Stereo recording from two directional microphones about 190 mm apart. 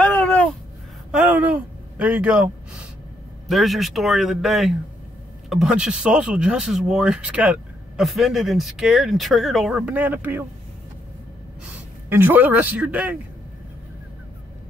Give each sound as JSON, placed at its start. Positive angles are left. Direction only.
{"t": 0.0, "sound": "a sound", "side_deg": 10}
{"t": 1.1, "sound": "speech", "side_deg": -10}
{"t": 12.1, "sound": "a man's voice", "side_deg": -10}